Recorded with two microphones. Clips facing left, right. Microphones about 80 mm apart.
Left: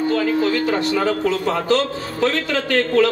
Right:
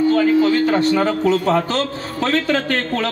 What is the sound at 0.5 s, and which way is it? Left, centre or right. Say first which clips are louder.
A man's voice: right 4 dB; right.